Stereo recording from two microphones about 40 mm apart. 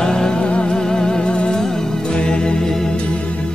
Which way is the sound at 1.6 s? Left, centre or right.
Centre.